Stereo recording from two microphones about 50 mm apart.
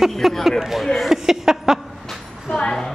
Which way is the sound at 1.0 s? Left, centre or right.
Centre.